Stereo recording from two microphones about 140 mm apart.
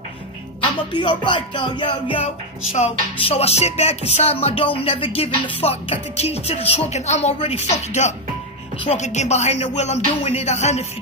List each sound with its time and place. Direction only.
0.9 s music: 35° left (ahead or behind)
2.7 s music: 45° left (ahead or behind)